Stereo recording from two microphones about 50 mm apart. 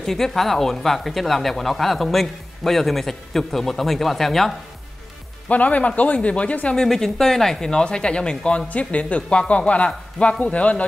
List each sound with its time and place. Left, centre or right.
0.0 s speech: centre
5.5 s speech: left
6.7 s speech: centre; by 10.8 s left